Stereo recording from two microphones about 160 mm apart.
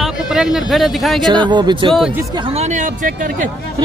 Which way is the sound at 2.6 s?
50° right (ahead or behind).